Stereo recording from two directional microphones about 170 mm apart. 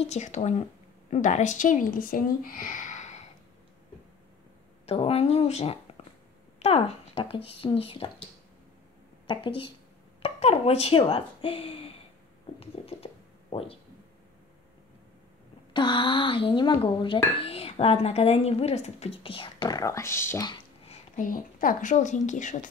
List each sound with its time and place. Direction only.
0.0 s speech: 45° left (ahead or behind)
4.8 s speech: 35° left (ahead or behind)
9.3 s speech: 30° left (ahead or behind)
12.5 s a sound: 35° left (ahead or behind)
15.7 s speech: 30° left (ahead or behind)
20.4 s a sound: 35° left (ahead or behind)
21.3 s speech: 55° left (ahead or behind)